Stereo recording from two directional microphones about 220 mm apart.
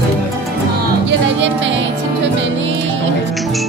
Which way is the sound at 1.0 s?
55° right (ahead or behind).